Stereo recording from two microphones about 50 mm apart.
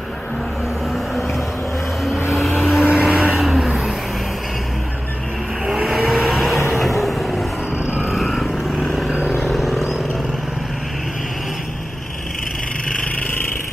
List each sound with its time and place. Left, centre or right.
2.3 s vehicle: centre
2.9 s vehicle: right
5.9 s vehicle: centre
7.8 s vehicle: centre
8.1 s vehicle: centre